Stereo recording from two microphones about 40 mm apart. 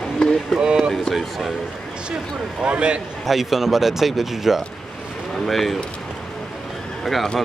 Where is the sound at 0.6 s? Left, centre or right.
Right.